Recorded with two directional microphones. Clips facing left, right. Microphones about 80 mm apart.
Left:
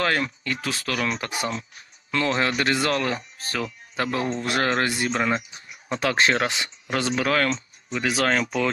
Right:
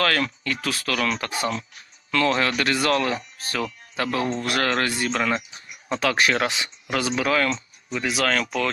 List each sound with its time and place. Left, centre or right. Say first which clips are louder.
0.0 s speech: right 1 dB; left
7.2 s speech: even; left
8.2 s speech: even; left